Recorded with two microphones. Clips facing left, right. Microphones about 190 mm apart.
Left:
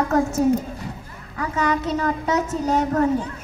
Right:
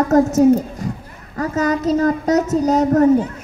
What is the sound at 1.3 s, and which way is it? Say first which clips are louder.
Speech: right 4 dB; 40° right (ahead or behind).